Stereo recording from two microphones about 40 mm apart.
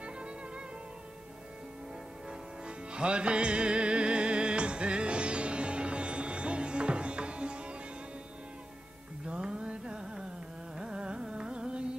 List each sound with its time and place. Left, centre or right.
2.9 s music: right
9.3 s music: right
10.8 s carnatic music: right